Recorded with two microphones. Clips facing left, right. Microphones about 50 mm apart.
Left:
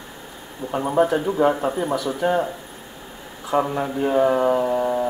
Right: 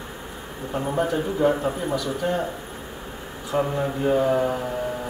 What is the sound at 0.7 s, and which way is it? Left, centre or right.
Speech, left.